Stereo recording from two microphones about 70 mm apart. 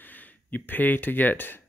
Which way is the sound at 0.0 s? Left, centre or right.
Left.